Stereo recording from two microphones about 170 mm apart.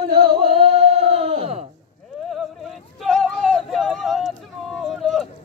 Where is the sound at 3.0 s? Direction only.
Centre (ahead or behind).